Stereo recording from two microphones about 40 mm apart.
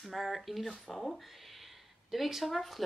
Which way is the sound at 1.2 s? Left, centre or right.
Centre.